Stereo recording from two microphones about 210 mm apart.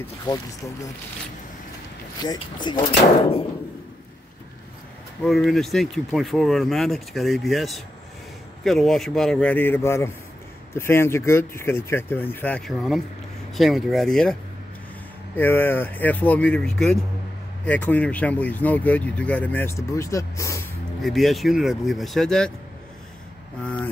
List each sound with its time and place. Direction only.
0.2 s speech: 20° left (ahead or behind)
2.2 s speech: 20° left (ahead or behind)
5.2 s speech: centre (ahead or behind)
15.3 s speech: 10° left (ahead or behind)
21.0 s speech: centre (ahead or behind)